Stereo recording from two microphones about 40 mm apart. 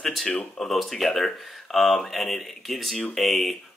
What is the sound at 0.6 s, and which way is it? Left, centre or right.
Speech, centre.